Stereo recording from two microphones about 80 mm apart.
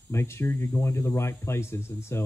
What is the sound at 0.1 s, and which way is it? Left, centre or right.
Speech, left.